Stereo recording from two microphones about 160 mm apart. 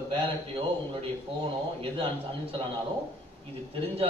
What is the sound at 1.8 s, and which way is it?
Speech, 35° right (ahead or behind).